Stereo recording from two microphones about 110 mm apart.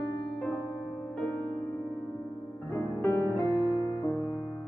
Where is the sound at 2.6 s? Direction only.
25° left (ahead or behind).